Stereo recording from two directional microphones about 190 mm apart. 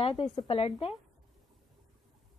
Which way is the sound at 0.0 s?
30° left (ahead or behind).